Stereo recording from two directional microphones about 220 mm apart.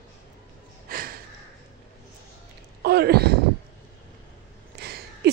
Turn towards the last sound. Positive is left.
turn(degrees=-45)  # may be behind; listen again after turning